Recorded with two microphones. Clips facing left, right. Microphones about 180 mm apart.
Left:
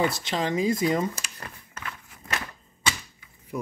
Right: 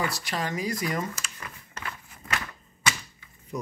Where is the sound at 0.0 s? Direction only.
25° left (ahead or behind).